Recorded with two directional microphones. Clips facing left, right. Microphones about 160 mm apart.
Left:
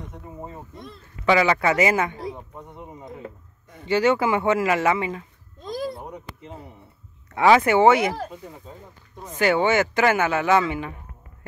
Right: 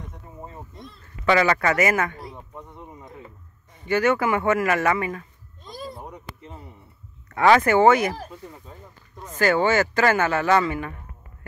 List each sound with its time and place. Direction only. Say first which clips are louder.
1.2 s a man's voice: left 1 dB; 10° left (ahead or behind)
3.8 s speech: left 1 dB; 25° left (ahead or behind)
4.6 s a man's voice: left 1 dB; 15° left (ahead or behind)
5.6 s a sound: left 8 dB; 90° left
7.2 s a man's voice: even; 10° left (ahead or behind)